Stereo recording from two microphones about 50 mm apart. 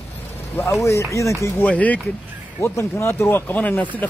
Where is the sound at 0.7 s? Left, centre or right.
Left.